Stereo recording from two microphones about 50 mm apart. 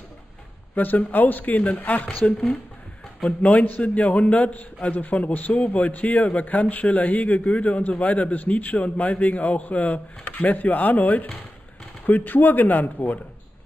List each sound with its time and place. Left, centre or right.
0.7 s speech: left